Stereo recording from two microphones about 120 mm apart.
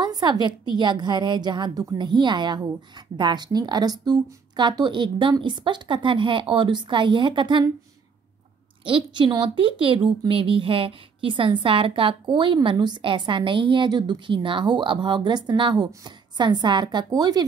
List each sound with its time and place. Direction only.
0.0 s a woman's voice: 35° right (ahead or behind)
8.8 s a woman's voice: 45° right (ahead or behind)